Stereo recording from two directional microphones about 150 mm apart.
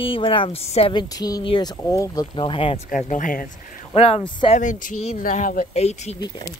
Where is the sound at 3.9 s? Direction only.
40° left (ahead or behind).